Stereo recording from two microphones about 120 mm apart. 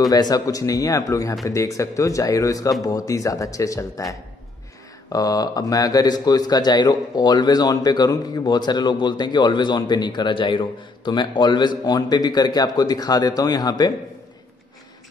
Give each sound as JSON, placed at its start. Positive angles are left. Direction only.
{"t": 0.0, "sound": "speech", "side_deg": 30}